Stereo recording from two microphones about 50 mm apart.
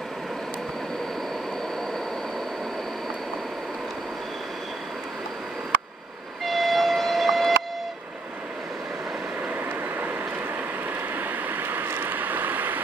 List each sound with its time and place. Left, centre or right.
6.4 s train: centre
9.5 s vehicle: right
11.1 s vehicle: right